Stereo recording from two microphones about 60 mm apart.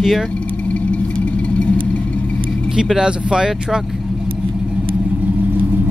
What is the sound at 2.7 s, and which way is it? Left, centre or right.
Speech, centre.